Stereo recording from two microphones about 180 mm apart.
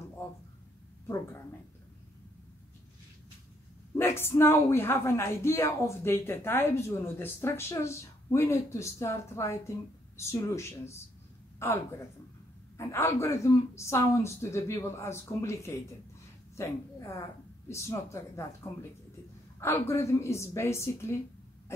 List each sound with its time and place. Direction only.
1.0 s speech: 15° left (ahead or behind)
3.9 s a woman's voice: 15° left (ahead or behind)